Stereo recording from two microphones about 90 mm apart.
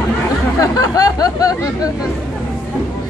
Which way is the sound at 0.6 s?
45° left (ahead or behind).